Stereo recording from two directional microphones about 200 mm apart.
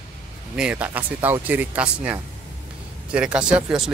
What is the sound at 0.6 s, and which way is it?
Speech, 5° right (ahead or behind).